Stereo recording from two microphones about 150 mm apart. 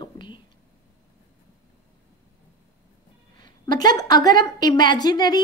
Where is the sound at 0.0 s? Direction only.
30° left (ahead or behind).